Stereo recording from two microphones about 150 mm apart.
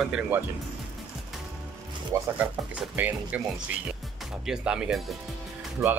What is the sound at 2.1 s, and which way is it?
Speech, 20° right (ahead or behind).